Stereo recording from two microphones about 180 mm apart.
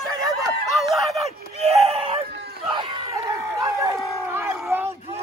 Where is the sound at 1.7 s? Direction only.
35° right (ahead or behind).